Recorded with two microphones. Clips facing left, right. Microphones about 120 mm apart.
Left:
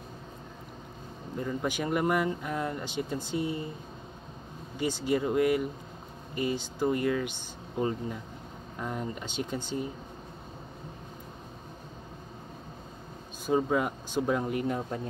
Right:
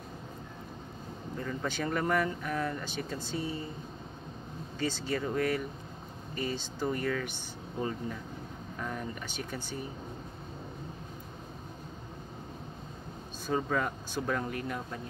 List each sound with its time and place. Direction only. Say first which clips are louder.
1.4 s speech: left 3 dB; 15° left (ahead or behind)
4.7 s speech: left 5 dB; 15° left (ahead or behind)
13.5 s speech: left 4 dB; 15° left (ahead or behind)